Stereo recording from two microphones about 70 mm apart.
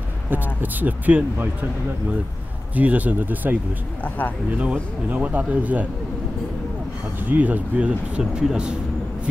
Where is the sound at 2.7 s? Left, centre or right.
Right.